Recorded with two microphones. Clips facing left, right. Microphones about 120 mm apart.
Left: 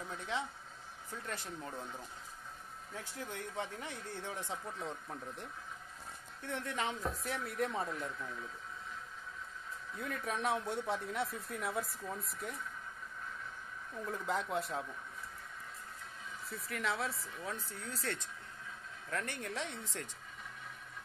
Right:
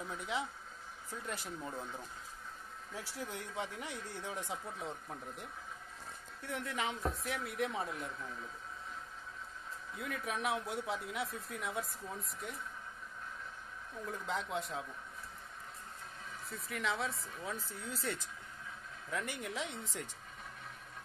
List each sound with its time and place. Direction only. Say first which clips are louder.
0.1 s speech: even; 10° right (ahead or behind)
3.2 s speech: even; 20° right (ahead or behind)
4.6 s speech: left 1 dB; centre (ahead or behind)
6.5 s speech: even; centre (ahead or behind)
9.9 s speech: left 1 dB; 5° right (ahead or behind)
14.0 s speech: left 2 dB; centre (ahead or behind)
16.4 s speech: even; centre (ahead or behind)